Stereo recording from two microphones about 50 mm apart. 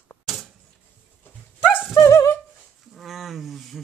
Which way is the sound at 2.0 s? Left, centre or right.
Left.